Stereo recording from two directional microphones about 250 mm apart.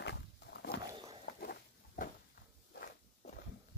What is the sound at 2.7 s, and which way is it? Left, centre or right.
Walk, left.